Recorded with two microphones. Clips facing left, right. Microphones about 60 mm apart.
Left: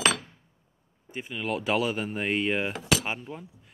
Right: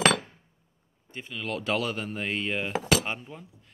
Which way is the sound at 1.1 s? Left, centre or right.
Centre.